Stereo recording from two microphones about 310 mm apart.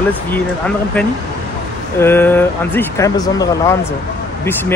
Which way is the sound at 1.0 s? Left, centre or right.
Centre.